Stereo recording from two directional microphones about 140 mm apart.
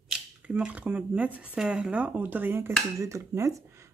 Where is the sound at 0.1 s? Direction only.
5° right (ahead or behind).